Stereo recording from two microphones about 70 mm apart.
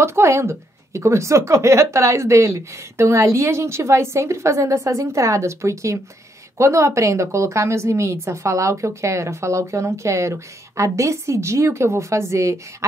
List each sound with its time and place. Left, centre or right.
0.0 s a woman's voice: right